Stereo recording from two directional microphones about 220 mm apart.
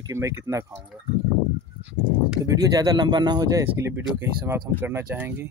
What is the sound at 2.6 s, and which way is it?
Speech, 15° right (ahead or behind).